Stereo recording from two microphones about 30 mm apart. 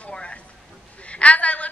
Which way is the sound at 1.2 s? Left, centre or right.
Left.